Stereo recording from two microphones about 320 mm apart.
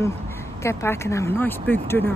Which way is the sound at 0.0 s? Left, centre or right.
Centre.